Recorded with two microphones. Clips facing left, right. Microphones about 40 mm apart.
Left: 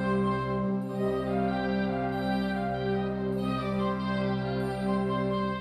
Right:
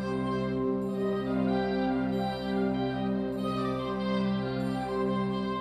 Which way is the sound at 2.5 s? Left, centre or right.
Centre.